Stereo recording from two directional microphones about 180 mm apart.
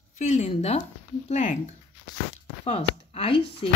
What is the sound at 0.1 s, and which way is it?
Speech, 40° left (ahead or behind).